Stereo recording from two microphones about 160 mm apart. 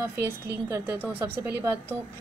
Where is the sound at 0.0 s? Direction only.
15° right (ahead or behind).